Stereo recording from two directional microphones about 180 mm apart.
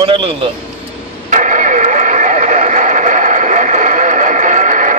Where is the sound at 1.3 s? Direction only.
45° right (ahead or behind).